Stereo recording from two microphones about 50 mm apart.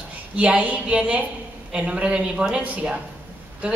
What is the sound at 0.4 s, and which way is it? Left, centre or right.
A man's voice, right.